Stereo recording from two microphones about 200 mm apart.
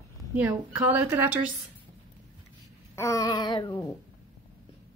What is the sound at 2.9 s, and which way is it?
Speech, 15° left (ahead or behind).